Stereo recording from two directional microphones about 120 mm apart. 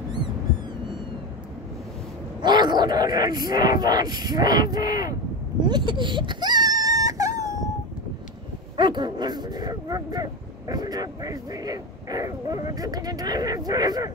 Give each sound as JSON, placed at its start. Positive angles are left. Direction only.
{"t": 2.4, "sound": "speech", "side_deg": -35}
{"t": 5.6, "sound": "whimper", "side_deg": -40}
{"t": 8.7, "sound": "speech", "side_deg": -40}